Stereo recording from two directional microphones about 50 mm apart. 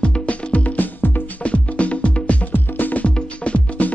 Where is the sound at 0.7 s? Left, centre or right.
Left.